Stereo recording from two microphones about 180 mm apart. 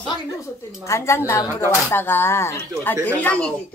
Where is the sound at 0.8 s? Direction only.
15° left (ahead or behind).